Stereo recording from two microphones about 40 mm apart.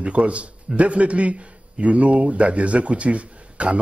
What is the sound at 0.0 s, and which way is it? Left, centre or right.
Speech, right.